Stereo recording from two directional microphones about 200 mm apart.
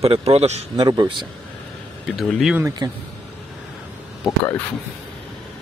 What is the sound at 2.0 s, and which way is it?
Speech, centre (ahead or behind).